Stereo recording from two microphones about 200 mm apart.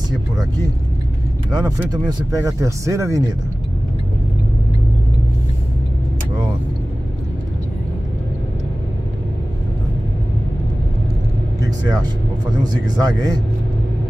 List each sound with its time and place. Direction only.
1.5 s speech: 20° right (ahead or behind)
11.6 s speech: 20° right (ahead or behind)